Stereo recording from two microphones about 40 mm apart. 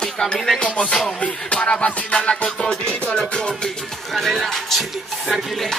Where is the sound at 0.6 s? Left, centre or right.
Left.